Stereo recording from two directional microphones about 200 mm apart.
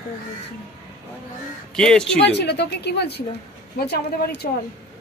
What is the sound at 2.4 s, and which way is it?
A woman's voice, 60° left (ahead or behind).